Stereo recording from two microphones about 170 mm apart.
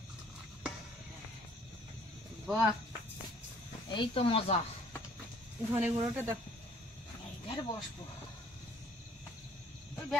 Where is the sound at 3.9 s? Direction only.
35° left (ahead or behind).